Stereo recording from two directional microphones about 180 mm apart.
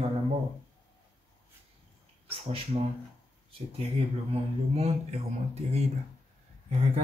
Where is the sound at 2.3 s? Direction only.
35° right (ahead or behind).